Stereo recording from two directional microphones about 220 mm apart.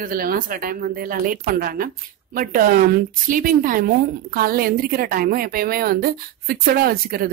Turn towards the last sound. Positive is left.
turn(degrees=-40)  # may be behind; listen again after turning